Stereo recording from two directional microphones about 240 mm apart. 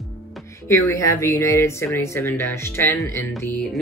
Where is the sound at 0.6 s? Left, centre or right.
Centre.